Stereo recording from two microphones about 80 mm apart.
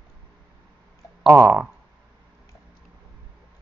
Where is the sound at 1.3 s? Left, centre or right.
Right.